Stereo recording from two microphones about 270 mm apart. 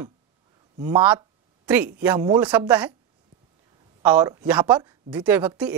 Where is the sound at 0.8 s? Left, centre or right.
Centre.